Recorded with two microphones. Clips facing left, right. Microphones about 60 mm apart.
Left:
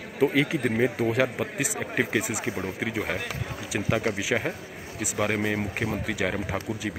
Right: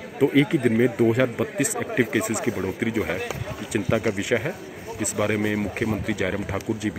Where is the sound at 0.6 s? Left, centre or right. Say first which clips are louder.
Right 5 dB; centre.